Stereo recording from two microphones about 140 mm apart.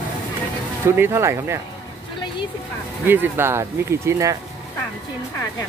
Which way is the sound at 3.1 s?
15° right (ahead or behind).